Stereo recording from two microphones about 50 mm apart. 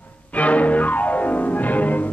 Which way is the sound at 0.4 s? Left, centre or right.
Left.